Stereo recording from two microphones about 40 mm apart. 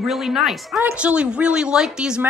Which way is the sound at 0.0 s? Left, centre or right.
Centre.